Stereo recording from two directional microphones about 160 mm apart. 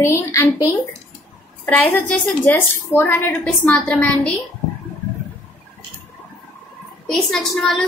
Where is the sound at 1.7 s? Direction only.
10° left (ahead or behind).